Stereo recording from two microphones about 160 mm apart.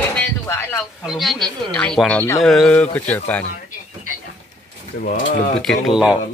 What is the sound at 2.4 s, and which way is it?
Speech, centre (ahead or behind).